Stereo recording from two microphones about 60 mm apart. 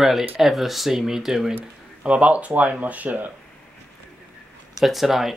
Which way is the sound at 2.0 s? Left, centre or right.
Right.